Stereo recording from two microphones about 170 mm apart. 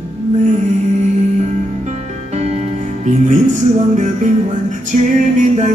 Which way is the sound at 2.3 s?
40° right (ahead or behind).